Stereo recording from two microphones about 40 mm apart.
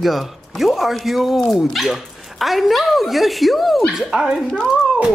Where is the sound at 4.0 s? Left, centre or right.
Centre.